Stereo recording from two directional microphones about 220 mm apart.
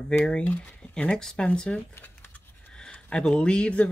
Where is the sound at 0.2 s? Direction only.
5° left (ahead or behind).